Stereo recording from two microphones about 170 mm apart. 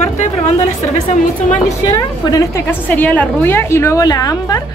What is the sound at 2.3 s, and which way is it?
A woman's voice, 15° left (ahead or behind).